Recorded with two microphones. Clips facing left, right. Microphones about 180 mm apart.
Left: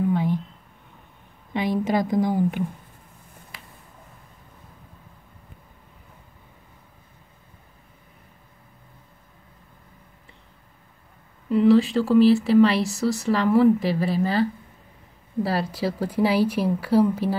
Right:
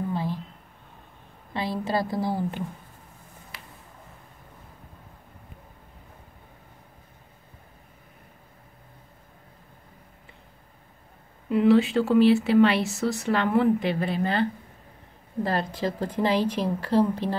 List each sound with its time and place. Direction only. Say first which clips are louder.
1.5 s speech: left 5 dB; 15° left (ahead or behind)
11.4 s speech: left 2 dB; centre (ahead or behind)